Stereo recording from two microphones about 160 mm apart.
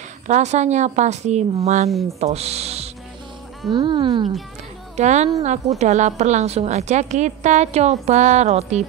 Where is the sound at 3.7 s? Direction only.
30° right (ahead or behind).